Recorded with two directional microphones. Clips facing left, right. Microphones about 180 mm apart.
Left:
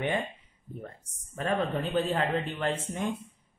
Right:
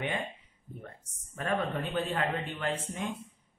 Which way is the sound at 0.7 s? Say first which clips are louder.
Left 5 dB; 30° left (ahead or behind).